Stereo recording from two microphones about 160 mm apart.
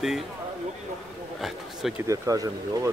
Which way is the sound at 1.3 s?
Centre (ahead or behind).